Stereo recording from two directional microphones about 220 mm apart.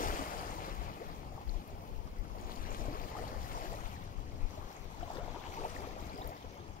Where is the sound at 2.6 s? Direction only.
40° left (ahead or behind).